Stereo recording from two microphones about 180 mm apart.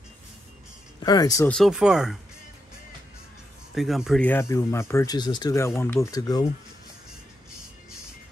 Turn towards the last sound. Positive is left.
turn(degrees=20)  # may be behind; listen again after turning